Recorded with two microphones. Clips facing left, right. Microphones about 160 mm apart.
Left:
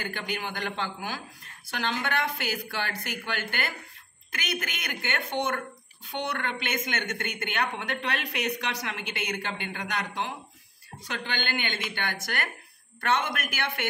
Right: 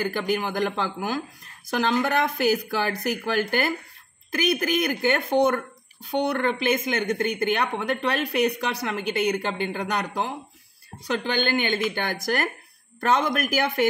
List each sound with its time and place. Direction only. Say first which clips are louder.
0.0 s speech: right 9 dB; 40° right (ahead or behind)
1.7 s speech: right 7 dB; 40° right (ahead or behind)